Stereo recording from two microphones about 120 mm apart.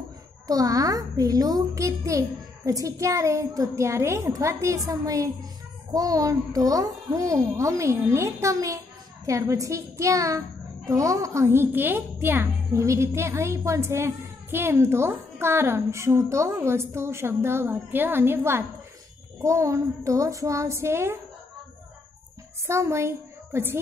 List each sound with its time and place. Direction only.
0.5 s a woman's voice: 30° right (ahead or behind)
22.7 s a woman's voice: 25° right (ahead or behind)